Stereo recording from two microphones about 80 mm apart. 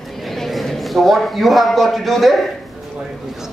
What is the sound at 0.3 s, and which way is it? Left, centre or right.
A man's voice, centre.